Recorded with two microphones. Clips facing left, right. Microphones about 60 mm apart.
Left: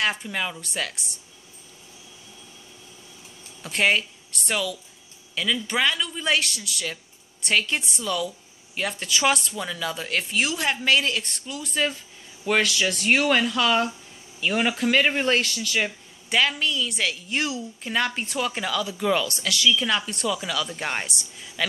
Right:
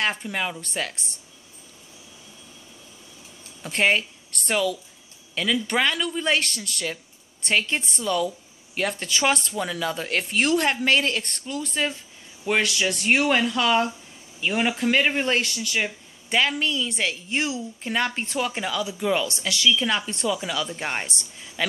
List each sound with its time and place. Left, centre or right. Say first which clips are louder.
0.2 s a woman's voice: right 1 dB; right
3.6 s a woman's voice: even; right
7.4 s a woman's voice: even; right
12.6 s speech: even; right
15.4 s a woman's voice: left 1 dB; right
18.5 s speech: even; right
21.6 s a woman's voice: right 1 dB; right